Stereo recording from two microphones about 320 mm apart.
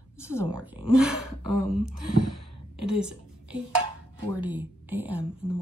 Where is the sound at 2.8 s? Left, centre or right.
Centre.